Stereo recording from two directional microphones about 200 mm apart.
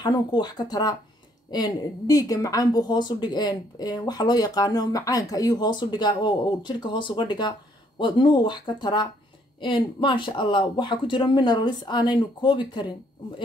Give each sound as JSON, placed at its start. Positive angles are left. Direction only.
{"t": 0.0, "sound": "a woman's voice", "side_deg": 20}